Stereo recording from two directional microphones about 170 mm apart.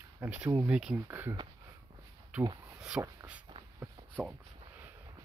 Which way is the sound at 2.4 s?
25° right (ahead or behind).